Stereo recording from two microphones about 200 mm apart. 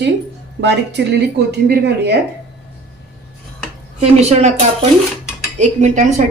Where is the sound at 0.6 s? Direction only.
60° right (ahead or behind).